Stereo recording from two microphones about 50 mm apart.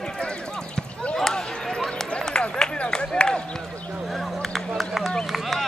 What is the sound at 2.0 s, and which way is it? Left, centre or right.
Run, centre.